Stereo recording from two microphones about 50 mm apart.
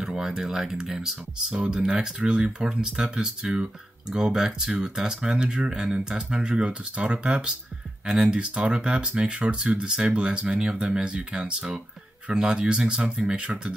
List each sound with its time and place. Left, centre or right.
0.0 s a sound: centre
0.3 s speech: centre
1.5 s speech: centre